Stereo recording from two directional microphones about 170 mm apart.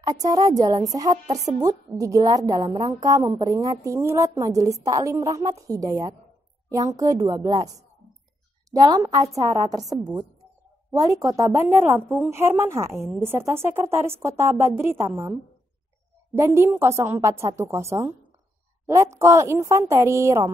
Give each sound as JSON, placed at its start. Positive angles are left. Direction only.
{"t": 0.0, "sound": "a woman's voice", "side_deg": -20}
{"t": 16.3, "sound": "a woman's voice", "side_deg": -15}